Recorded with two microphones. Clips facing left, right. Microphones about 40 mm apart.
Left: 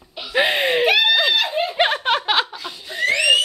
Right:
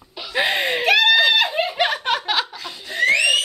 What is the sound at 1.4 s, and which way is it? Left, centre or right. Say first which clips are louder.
Snicker: right 1 dB; centre.